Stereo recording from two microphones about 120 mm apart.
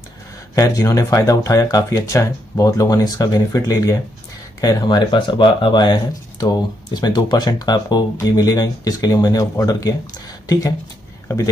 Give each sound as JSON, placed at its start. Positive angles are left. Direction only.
{"t": 0.6, "sound": "speech", "side_deg": 30}